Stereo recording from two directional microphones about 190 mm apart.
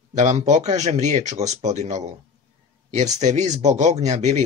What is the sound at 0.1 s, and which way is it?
Speech, 35° right (ahead or behind).